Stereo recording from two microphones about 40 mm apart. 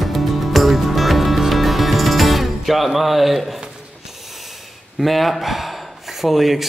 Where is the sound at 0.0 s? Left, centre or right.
Centre.